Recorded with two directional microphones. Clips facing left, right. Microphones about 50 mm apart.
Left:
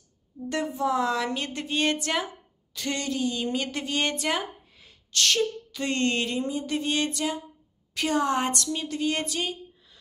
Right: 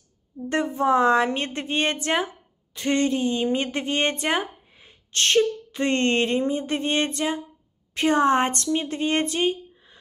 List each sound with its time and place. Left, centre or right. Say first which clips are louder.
0.5 s speech: right 5 dB; right